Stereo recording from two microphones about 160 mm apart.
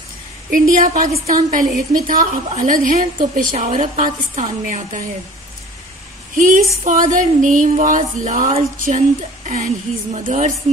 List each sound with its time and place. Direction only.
0.5 s a woman's voice: 55° right (ahead or behind)
6.3 s a woman's voice: 55° right (ahead or behind)